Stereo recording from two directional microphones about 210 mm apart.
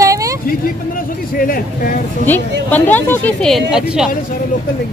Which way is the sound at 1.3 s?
40° left (ahead or behind).